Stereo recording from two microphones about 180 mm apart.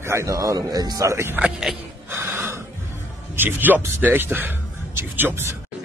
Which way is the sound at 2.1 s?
10° right (ahead or behind).